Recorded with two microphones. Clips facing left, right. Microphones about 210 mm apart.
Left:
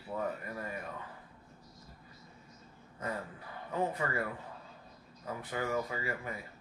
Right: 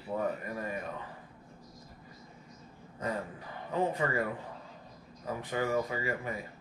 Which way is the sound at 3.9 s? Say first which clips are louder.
Right 4 dB; 20° right (ahead or behind).